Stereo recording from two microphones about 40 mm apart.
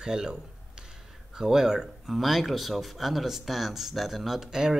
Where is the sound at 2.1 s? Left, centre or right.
Centre.